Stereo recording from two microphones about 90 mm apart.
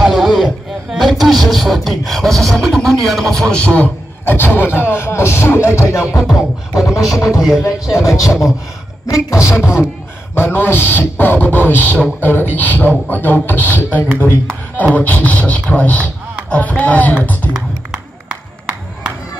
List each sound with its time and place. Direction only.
0.0 s a sound: 5° right (ahead or behind)
0.9 s speech: centre (ahead or behind); by 6.0 s 30° left (ahead or behind)
6.1 s music: centre (ahead or behind)
7.6 s a man's voice: 35° left (ahead or behind)
8.3 s music: 5° right (ahead or behind)
9.0 s a man's voice: 35° left (ahead or behind)
10.3 s a man's voice: 25° left (ahead or behind)
15.0 s a man's voice: 15° left (ahead or behind)
17.5 s a sound: 10° right (ahead or behind)